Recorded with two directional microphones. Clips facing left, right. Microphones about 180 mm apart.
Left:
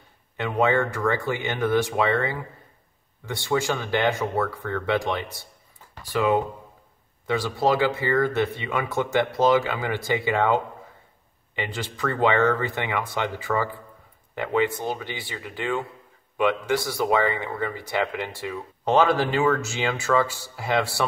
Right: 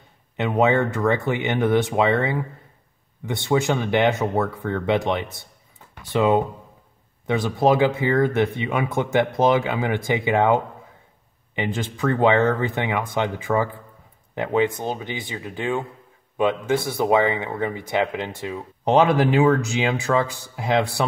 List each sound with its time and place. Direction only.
0.4 s speech: 20° right (ahead or behind)